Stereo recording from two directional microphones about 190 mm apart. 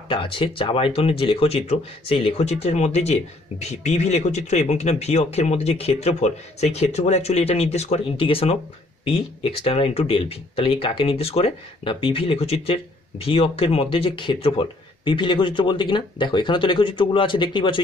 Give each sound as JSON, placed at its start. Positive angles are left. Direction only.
{"t": 0.1, "sound": "speech", "side_deg": 25}